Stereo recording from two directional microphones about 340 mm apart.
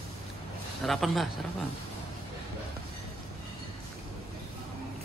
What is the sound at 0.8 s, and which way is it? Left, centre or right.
Speech, centre.